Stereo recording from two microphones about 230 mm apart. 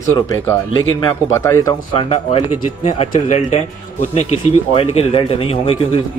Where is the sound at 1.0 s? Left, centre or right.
Centre.